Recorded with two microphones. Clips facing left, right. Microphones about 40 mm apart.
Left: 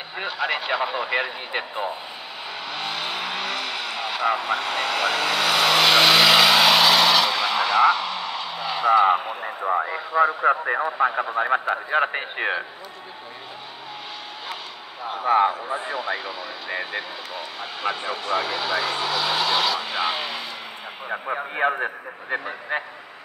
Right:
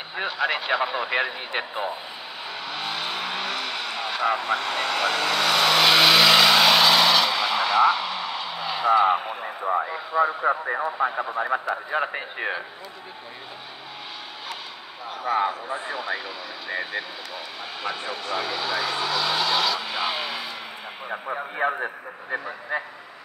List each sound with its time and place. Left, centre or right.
0.1 s speech: centre
2.6 s vehicle: centre
10.4 s a man's voice: left
11.3 s a man's voice: left
15.0 s speech: left
15.9 s speech: centre
21.5 s a man's voice: left